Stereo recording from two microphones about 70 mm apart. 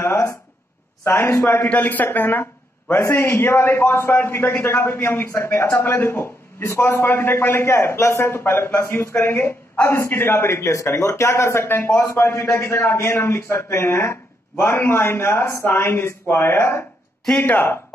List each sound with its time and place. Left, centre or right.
0.0 s a sound: left
1.0 s a man's voice: left
1.6 s a man's voice: left